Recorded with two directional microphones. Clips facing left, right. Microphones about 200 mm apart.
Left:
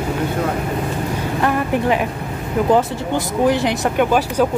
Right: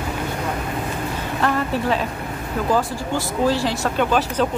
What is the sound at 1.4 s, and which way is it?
Speech, 15° left (ahead or behind).